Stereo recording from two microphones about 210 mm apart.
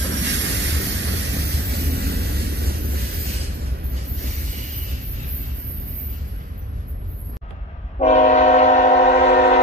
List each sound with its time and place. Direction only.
0.2 s vehicle: 60° right (ahead or behind)
8.0 s train: 30° left (ahead or behind)